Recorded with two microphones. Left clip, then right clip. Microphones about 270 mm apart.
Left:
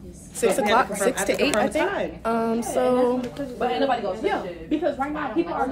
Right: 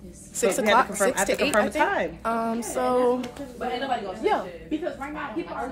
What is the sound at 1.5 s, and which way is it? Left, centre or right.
Speech, right.